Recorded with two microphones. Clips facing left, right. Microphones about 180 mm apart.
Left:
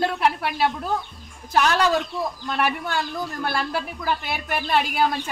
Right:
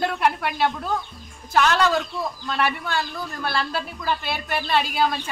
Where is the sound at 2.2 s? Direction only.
15° left (ahead or behind).